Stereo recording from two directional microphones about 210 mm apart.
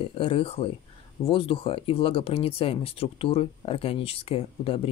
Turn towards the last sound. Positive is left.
turn(degrees=25)  # may be behind; listen again after turning